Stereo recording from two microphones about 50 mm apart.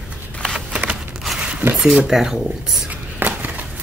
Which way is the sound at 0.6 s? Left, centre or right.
Right.